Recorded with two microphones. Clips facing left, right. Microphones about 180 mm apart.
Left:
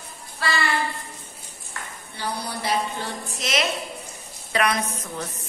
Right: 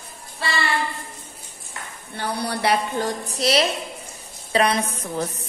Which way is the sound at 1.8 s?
20° right (ahead or behind).